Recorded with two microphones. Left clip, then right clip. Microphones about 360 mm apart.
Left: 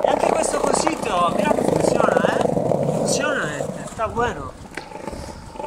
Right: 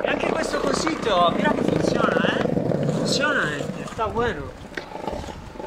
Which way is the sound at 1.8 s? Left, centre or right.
Left.